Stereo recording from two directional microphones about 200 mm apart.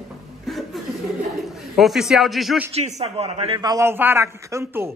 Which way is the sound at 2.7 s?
30° right (ahead or behind).